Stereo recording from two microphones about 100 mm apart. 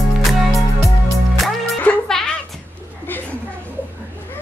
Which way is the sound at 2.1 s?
5° left (ahead or behind).